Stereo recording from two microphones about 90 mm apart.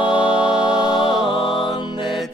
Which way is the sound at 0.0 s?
10° right (ahead or behind).